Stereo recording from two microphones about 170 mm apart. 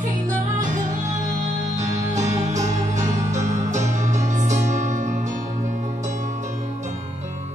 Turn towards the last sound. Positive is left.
turn(degrees=-45)  # may be behind; listen again after turning